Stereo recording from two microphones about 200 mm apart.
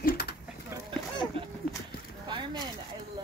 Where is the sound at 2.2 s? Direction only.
25° right (ahead or behind).